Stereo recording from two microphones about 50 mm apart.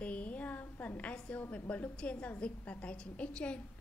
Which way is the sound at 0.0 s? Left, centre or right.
Left.